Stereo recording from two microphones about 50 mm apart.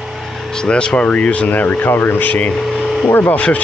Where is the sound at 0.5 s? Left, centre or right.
Centre; by 2.3 s left.